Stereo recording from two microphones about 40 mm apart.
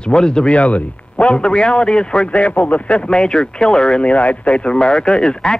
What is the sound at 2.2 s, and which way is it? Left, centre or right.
Speech, left.